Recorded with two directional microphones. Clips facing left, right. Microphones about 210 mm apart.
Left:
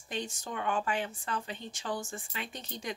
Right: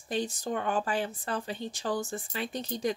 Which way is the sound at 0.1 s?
35° right (ahead or behind).